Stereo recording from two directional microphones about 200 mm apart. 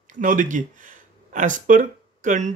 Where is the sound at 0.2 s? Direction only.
40° right (ahead or behind).